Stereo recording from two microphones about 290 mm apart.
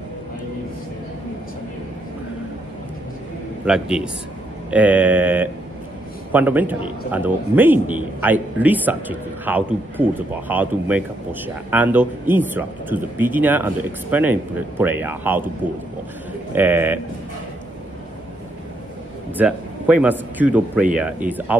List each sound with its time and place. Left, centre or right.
3.6 s a man's voice: centre
16.5 s speech: centre
19.3 s a man's voice: centre